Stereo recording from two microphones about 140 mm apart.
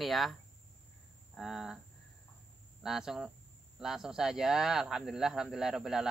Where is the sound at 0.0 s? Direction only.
Centre (ahead or behind).